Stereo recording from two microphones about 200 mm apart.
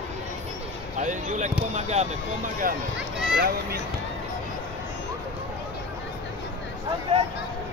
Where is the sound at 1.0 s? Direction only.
40° right (ahead or behind).